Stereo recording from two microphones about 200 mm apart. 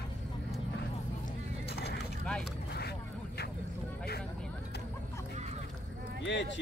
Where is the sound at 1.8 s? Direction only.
55° left (ahead or behind).